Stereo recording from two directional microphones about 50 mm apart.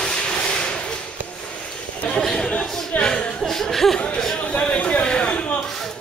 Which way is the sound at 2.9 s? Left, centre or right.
Left.